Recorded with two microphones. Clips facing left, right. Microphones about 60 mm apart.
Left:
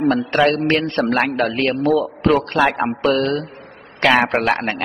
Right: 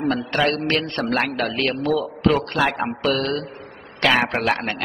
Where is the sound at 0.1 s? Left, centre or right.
Left.